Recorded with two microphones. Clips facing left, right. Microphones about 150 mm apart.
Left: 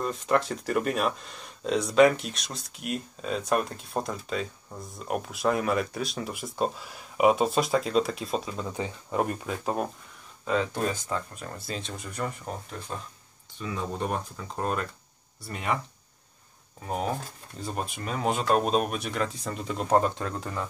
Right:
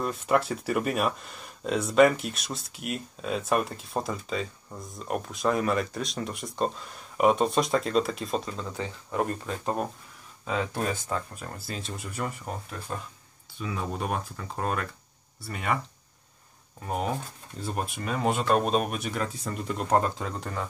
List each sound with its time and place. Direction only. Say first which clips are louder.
0.0 s speech: even; 5° right (ahead or behind)
8.5 s speech: left 2 dB; 15° left (ahead or behind)
9.5 s speech: even; 5° left (ahead or behind)
16.8 s speech: even; centre (ahead or behind)